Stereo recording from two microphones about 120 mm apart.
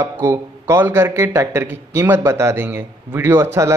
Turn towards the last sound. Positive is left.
turn(degrees=-25)  # may be behind; listen again after turning